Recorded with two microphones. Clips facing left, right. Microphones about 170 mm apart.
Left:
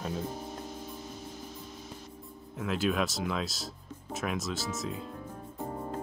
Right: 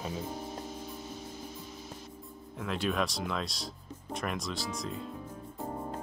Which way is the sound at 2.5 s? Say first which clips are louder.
Left 2 dB; centre (ahead or behind).